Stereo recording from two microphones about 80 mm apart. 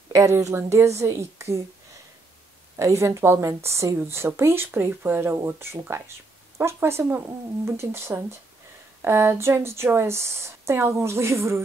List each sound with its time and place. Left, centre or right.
0.4 s a woman's voice: right
2.8 s a woman's voice: right